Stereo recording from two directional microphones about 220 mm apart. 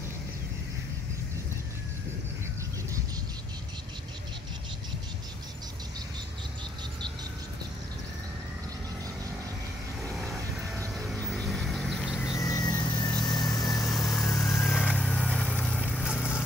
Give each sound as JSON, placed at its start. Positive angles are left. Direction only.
{"t": 10.8, "sound": "vehicle", "side_deg": 5}
{"t": 13.9, "sound": "vehicle", "side_deg": 0}